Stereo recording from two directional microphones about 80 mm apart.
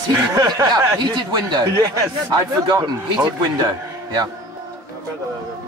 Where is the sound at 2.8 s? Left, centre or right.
Right.